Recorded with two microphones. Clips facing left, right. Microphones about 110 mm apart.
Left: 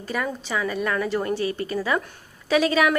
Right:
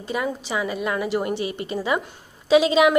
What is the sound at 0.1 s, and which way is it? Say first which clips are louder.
A woman's voice: right 1 dB; 15° right (ahead or behind).